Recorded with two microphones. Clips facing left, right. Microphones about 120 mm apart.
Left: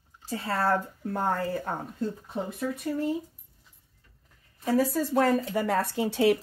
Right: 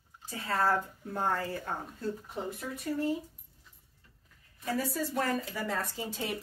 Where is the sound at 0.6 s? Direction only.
60° left (ahead or behind).